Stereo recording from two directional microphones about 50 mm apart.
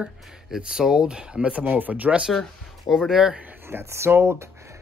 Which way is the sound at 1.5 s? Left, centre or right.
Right.